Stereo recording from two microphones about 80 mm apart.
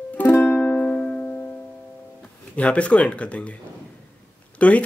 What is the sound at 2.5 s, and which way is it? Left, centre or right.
Speech, centre.